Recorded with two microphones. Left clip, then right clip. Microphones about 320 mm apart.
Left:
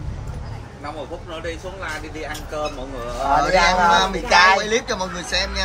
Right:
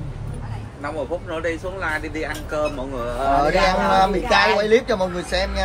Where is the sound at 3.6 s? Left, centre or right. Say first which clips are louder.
Left 1 dB; centre.